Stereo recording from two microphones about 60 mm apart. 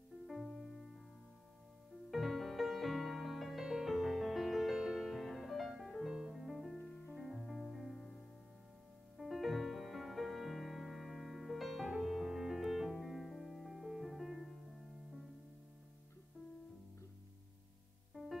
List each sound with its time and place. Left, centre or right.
0.3 s music: centre
2.0 s music: centre
18.1 s music: centre